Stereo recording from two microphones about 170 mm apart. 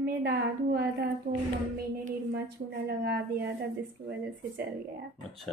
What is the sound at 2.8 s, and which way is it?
Speech, 75° right (ahead or behind).